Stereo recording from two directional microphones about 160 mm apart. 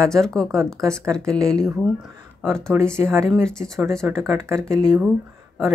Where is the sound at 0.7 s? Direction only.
20° right (ahead or behind).